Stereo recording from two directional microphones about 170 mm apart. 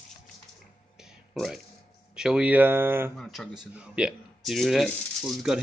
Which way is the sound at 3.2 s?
Centre (ahead or behind).